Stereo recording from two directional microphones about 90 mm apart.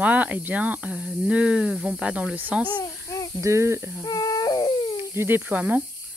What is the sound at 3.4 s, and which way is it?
Cricket, 30° right (ahead or behind).